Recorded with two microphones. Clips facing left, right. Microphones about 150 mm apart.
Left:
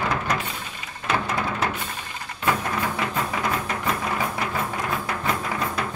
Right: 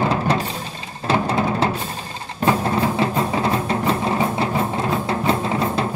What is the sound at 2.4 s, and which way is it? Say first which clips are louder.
Music: right 6 dB; 30° right (ahead or behind).